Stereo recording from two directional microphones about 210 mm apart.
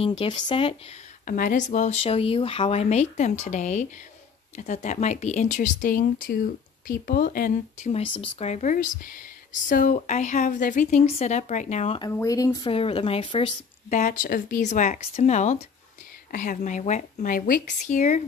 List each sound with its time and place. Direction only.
0.0 s speech: 25° left (ahead or behind)
1.2 s speech: 40° left (ahead or behind)
7.9 s speech: 25° left (ahead or behind)
12.0 s speech: 15° left (ahead or behind)
13.8 s speech: 35° left (ahead or behind)